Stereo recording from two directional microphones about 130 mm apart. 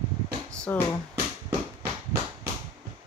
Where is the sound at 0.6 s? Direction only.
15° left (ahead or behind).